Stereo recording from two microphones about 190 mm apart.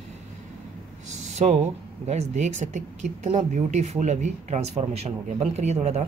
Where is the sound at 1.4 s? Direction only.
35° right (ahead or behind).